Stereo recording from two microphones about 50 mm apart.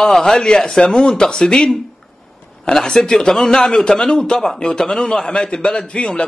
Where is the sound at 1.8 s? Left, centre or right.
Centre.